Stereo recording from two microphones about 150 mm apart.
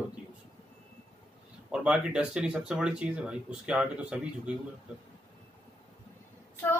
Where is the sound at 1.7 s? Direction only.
5° right (ahead or behind).